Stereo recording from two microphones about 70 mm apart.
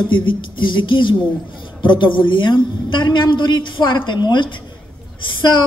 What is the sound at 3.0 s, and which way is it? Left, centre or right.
A woman's voice, left.